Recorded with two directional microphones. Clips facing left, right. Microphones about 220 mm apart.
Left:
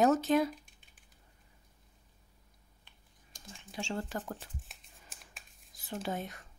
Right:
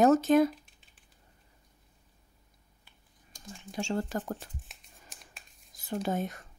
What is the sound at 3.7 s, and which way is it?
Speech, 45° right (ahead or behind).